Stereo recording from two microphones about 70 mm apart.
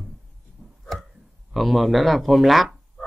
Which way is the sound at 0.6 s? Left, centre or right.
Centre.